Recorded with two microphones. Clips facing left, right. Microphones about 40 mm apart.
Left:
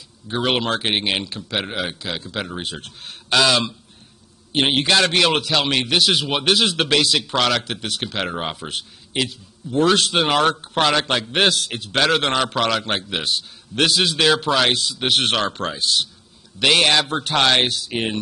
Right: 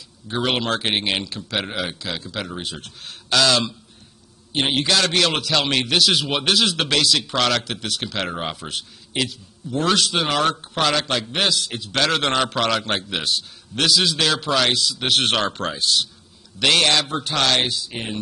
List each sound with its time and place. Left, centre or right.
0.3 s a man's voice: centre
4.5 s speech: left
5.1 s a man's voice: centre
9.9 s speech: left
11.3 s a man's voice: left
11.9 s a man's voice: centre
13.8 s speech: left
14.1 s a man's voice: centre
14.7 s speech: left
15.0 s a man's voice: centre
17.1 s a man's voice: left